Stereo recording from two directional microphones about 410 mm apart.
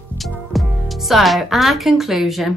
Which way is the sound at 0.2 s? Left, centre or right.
Centre.